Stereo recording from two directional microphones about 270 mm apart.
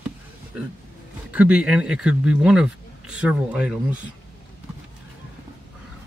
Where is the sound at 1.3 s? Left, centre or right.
Centre.